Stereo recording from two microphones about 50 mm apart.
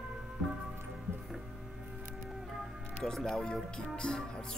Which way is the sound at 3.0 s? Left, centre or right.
Centre.